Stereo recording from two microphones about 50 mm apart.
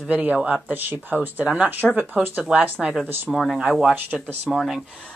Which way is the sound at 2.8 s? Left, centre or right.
Centre.